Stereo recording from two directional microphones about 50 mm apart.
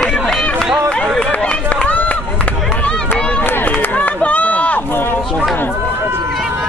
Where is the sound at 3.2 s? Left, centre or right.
Left.